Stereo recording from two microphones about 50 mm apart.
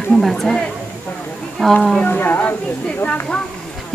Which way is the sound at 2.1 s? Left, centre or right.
Left.